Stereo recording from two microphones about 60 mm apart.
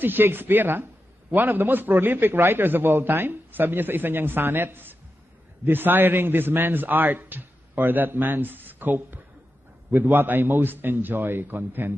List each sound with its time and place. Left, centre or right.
0.0 s a man's voice: right